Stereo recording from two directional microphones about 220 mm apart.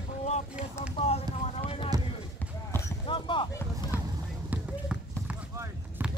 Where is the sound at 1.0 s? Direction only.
25° left (ahead or behind).